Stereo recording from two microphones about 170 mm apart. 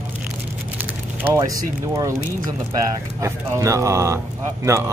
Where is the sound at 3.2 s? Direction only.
15° right (ahead or behind).